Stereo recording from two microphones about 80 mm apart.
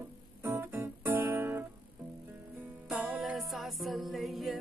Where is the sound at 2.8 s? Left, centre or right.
Centre.